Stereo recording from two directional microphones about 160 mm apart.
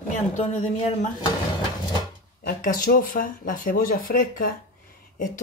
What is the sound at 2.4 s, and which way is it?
Speech, 60° left (ahead or behind).